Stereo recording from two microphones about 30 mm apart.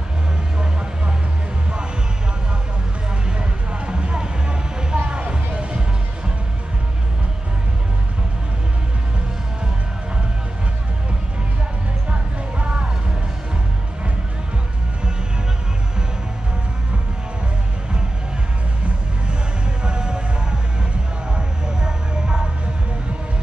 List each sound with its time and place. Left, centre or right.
3.3 s music: right
12.1 s music: right
19.8 s music: right
21.8 s a sound: right